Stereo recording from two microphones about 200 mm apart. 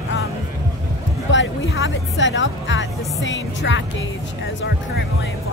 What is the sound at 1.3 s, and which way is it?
Speech, 65° left (ahead or behind).